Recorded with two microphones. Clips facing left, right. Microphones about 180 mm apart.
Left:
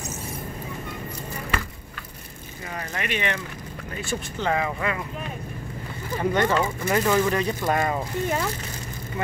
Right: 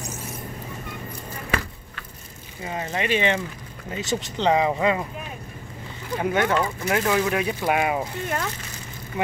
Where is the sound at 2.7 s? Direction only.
25° right (ahead or behind).